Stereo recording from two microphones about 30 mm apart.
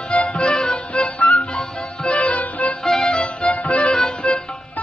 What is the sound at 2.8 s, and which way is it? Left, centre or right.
Music, centre.